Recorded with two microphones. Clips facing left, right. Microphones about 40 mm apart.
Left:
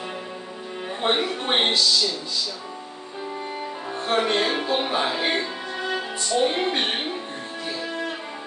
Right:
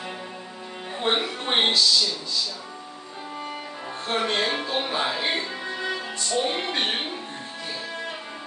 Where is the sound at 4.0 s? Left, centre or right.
Centre.